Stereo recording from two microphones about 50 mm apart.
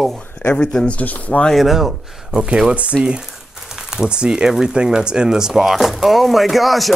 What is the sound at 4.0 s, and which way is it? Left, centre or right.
Speech, centre.